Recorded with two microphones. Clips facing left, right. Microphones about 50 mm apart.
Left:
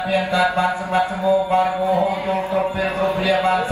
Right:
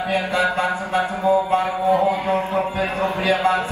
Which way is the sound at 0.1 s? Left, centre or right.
Right.